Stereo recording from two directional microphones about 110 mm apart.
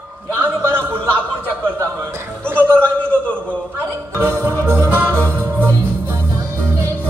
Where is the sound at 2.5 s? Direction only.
20° right (ahead or behind).